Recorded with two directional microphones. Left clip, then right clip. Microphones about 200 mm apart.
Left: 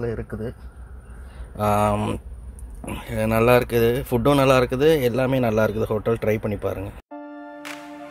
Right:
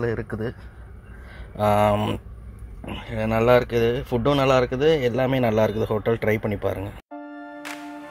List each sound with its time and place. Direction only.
0.0 s speech: 20° right (ahead or behind)
1.6 s speech: 5° left (ahead or behind)